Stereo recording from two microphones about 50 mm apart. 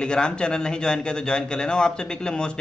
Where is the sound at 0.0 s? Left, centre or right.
Centre.